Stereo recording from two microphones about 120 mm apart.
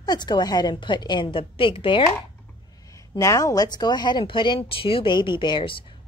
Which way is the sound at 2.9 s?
25° left (ahead or behind).